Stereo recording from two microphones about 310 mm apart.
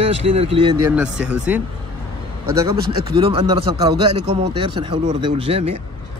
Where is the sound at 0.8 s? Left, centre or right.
Centre.